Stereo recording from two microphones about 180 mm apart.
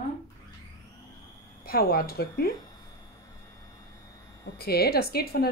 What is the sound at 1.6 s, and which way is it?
Speech, 60° left (ahead or behind).